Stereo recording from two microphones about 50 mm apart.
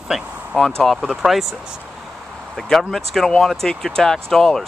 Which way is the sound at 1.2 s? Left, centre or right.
Centre.